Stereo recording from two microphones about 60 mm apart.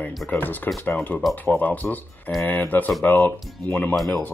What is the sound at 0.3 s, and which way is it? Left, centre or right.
Speech, left.